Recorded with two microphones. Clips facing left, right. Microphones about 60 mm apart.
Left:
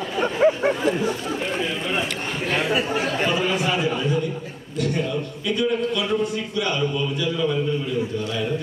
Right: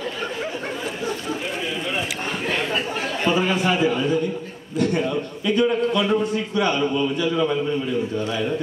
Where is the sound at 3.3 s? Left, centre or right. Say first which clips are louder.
Right 2 dB; right.